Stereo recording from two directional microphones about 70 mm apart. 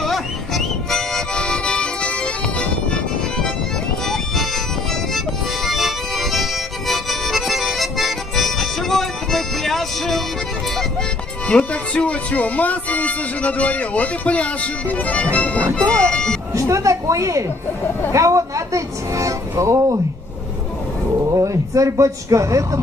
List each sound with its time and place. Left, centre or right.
0.0 s accordion: centre
5.1 s music: centre
11.4 s speech: centre
16.1 s a sound: centre
16.5 s speech: right
21.2 s speech: right